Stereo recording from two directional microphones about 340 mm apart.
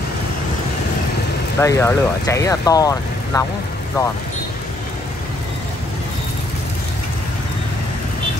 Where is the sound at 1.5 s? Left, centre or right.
Centre.